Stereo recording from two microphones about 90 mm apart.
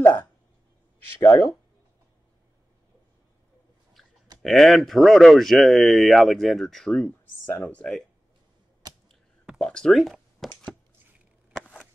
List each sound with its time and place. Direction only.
0.0 s a sound: 20° left (ahead or behind)
1.2 s speech: 25° left (ahead or behind)
4.4 s speech: centre (ahead or behind)
9.6 s speech: 5° left (ahead or behind)